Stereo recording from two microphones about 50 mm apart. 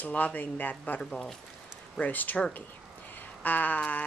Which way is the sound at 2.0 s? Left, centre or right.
Left.